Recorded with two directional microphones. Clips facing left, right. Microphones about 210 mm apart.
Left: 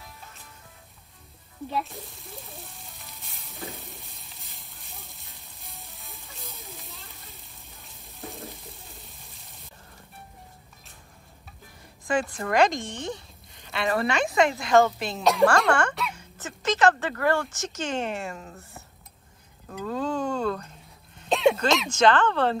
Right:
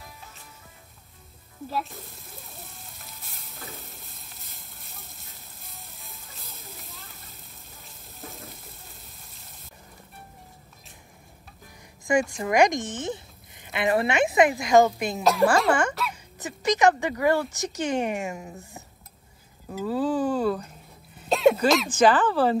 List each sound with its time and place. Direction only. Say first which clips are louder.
1.7 s music: even; centre (ahead or behind)
12.1 s speech: right 3 dB; 15° right (ahead or behind)
15.2 s speech: even; 5° right (ahead or behind)